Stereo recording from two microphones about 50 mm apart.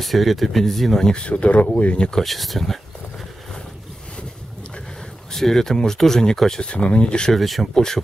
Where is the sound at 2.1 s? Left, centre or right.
Centre.